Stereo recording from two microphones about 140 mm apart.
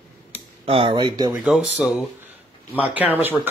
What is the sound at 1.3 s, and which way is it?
A man's voice, 10° right (ahead or behind).